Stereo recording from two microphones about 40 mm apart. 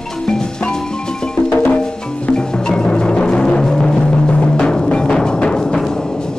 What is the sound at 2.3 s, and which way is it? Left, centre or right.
Music, centre.